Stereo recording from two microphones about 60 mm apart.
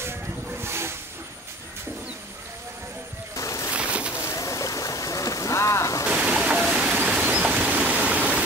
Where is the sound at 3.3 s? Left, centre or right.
Left.